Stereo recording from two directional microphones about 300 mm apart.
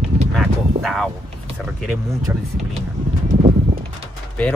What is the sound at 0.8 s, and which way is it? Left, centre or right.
Speech, centre.